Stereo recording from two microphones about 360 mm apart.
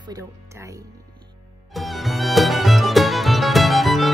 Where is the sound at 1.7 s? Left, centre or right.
Centre.